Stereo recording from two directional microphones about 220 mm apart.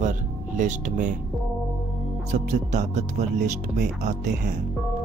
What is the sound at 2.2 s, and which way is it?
Speech, 30° right (ahead or behind).